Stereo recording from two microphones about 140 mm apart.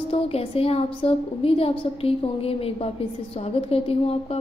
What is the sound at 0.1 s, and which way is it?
A woman's voice, 45° left (ahead or behind).